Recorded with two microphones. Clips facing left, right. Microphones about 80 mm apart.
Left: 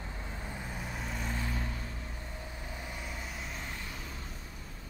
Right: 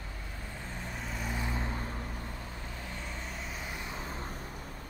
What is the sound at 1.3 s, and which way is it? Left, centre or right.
Vehicle, right.